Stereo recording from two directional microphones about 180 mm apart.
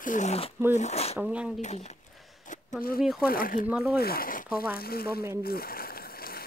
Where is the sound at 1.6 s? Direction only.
40° left (ahead or behind).